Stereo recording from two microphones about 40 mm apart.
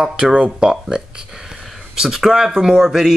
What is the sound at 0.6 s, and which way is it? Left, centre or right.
Speech, centre.